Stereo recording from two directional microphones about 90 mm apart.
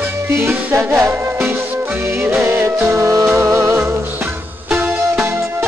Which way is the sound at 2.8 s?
35° right (ahead or behind).